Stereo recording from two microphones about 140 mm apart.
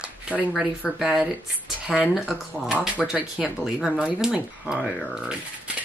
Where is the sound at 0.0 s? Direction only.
10° right (ahead or behind).